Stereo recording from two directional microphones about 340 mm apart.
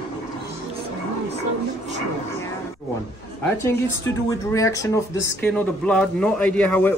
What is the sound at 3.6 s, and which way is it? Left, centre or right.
Speech, centre.